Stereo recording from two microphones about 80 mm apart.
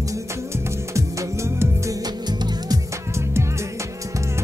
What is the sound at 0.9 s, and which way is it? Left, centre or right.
Music, right.